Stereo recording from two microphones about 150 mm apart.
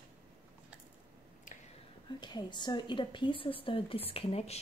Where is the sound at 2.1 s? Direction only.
30° left (ahead or behind).